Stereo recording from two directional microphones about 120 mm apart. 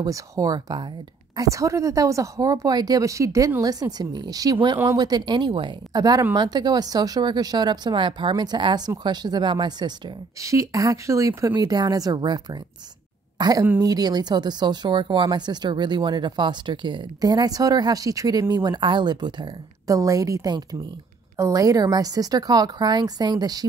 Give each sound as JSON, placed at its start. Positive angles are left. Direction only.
{"t": 0.0, "sound": "a woman's voice", "side_deg": -30}